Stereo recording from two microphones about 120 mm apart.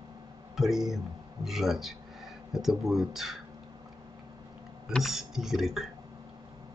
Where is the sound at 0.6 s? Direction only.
Centre (ahead or behind).